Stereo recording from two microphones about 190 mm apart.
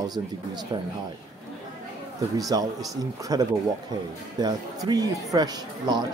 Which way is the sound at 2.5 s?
20° right (ahead or behind).